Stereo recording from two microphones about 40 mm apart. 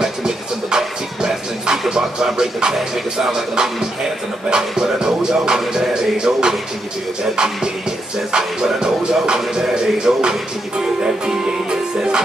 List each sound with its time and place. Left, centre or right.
0.0 s music: centre
4.5 s speech: centre
7.3 s music: centre
8.3 s speech: centre
10.8 s music: centre